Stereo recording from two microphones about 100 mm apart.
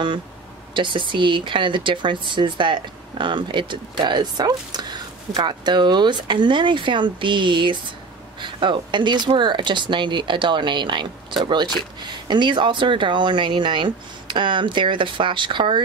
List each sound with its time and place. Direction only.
0.7 s speech: 55° right (ahead or behind)